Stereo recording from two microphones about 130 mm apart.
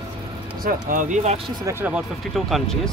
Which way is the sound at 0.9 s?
75° right (ahead or behind).